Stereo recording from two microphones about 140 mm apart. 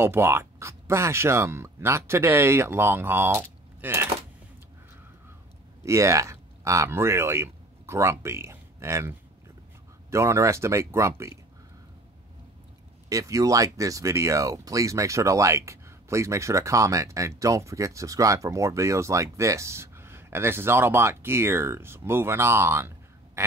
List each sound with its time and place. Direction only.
0.0 s speech: 15° right (ahead or behind)
5.9 s speech: 20° right (ahead or behind)
10.1 s speech: 20° right (ahead or behind)
13.1 s speech: 25° right (ahead or behind)